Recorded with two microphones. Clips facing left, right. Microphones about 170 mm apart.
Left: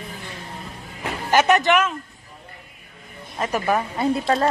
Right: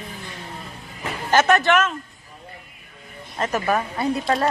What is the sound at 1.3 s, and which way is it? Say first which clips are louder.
Speech: even; 15° left (ahead or behind).